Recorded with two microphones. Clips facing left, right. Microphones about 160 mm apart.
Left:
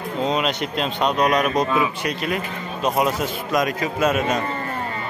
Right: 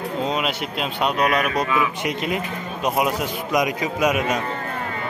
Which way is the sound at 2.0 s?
20° right (ahead or behind).